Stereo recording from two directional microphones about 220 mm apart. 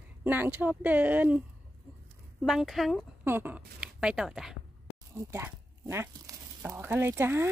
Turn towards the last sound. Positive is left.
turn(degrees=-10)  # may be behind; listen again after turning